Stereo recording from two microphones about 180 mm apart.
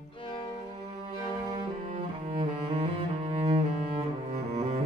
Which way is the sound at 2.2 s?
30° right (ahead or behind).